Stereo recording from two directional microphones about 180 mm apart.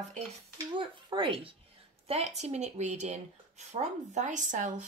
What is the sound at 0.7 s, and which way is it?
Speech, 30° right (ahead or behind).